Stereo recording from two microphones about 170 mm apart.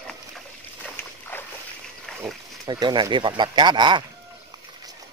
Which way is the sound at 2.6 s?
25° right (ahead or behind).